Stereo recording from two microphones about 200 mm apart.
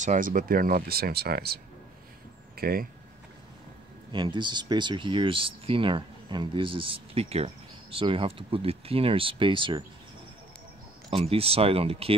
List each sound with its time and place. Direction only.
0.0 s speech: 40° right (ahead or behind)
4.1 s speech: 25° right (ahead or behind)
11.1 s speech: 30° right (ahead or behind)